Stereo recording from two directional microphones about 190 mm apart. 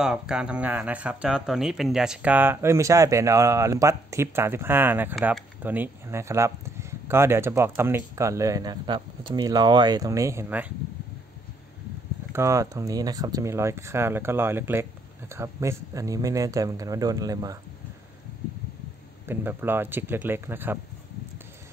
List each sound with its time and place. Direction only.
0.0 s speech: 5° right (ahead or behind)
12.3 s speech: 15° right (ahead or behind)
19.2 s speech: 10° right (ahead or behind)